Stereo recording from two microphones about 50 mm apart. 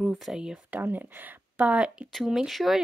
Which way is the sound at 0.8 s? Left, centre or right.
Right.